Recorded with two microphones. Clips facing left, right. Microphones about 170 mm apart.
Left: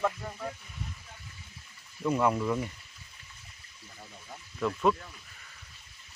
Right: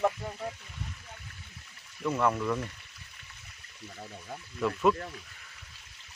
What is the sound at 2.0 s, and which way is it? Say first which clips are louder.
Speech: left 1 dB; 15° left (ahead or behind).